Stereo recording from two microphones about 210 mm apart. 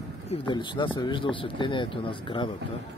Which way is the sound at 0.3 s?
20° left (ahead or behind).